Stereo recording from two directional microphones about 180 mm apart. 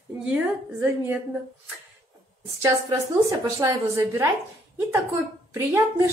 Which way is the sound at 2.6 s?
20° right (ahead or behind).